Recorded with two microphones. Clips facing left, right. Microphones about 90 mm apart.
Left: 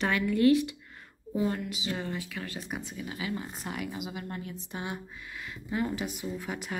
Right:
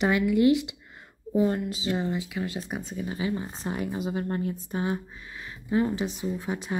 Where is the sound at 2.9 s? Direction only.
35° right (ahead or behind).